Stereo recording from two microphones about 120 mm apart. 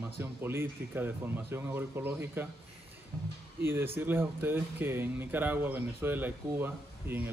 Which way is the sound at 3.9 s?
20° right (ahead or behind).